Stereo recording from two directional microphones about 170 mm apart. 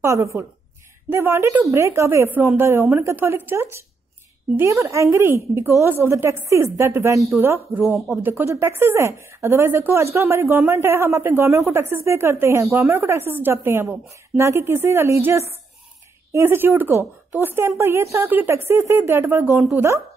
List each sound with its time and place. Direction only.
0.0 s a woman's voice: 15° right (ahead or behind)